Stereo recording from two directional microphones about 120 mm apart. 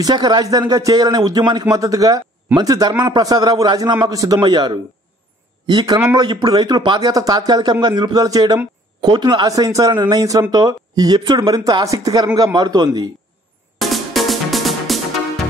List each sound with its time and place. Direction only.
0.0 s a man's voice: 35° right (ahead or behind)
9.5 s a man's voice: 30° right (ahead or behind)
13.7 s music: centre (ahead or behind)